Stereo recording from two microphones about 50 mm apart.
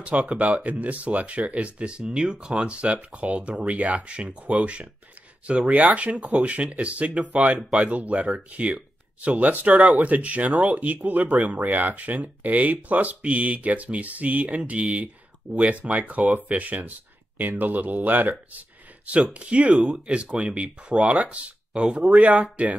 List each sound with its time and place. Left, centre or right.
0.0 s speech: right